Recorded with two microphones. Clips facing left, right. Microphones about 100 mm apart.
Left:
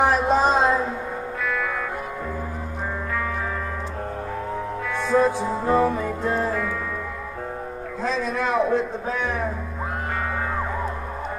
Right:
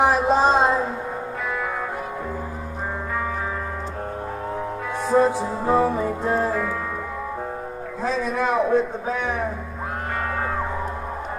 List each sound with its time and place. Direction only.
0.0 s a sound: centre (ahead or behind)
5.0 s music: 30° right (ahead or behind)
5.7 s music: 5° right (ahead or behind)
8.0 s a man's voice: 10° right (ahead or behind)